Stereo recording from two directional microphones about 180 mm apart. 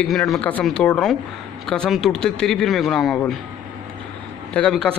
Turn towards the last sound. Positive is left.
turn(degrees=5)  # may be behind; listen again after turning